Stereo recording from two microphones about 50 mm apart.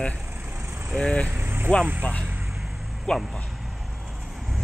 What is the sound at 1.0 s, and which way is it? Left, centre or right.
Speech, left.